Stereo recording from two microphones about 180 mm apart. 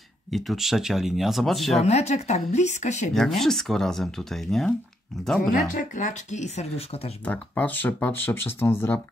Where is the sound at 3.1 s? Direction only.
Centre (ahead or behind).